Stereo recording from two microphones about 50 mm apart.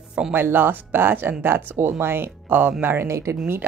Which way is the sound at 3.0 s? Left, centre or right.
Right.